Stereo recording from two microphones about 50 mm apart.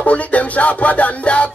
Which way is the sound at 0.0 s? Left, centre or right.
Left.